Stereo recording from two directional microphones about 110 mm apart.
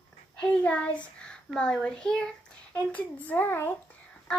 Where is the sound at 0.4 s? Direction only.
10° left (ahead or behind).